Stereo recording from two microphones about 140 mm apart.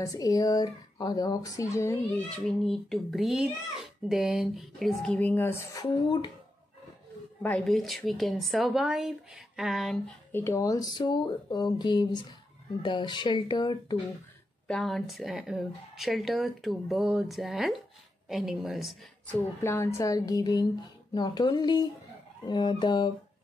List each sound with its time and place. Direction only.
0.0 s speech: 25° left (ahead or behind)
2.3 s speech: 5° left (ahead or behind); by 5.9 s 20° left (ahead or behind)
5.9 s speech: 35° left (ahead or behind)
7.4 s speech: 5° left (ahead or behind)
10.3 s speech: 20° left (ahead or behind)
14.7 s speech: centre (ahead or behind)
19.2 s speech: 15° left (ahead or behind); by 23.1 s 35° left (ahead or behind)